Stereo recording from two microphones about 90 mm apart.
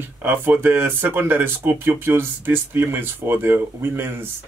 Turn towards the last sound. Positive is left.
turn(degrees=-25)  # may be behind; listen again after turning